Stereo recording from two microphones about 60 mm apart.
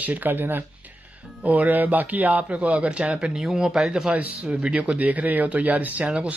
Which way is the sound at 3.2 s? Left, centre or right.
Centre.